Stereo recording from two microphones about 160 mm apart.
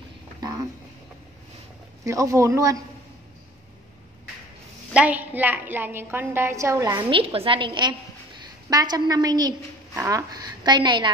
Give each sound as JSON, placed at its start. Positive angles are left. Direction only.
{"t": 2.0, "sound": "a woman's voice", "side_deg": -20}
{"t": 4.9, "sound": "a woman's voice", "side_deg": -10}
{"t": 7.0, "sound": "a woman's voice", "side_deg": -35}